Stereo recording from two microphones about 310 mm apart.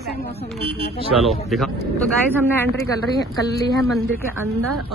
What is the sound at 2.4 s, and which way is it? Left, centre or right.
Speech, centre.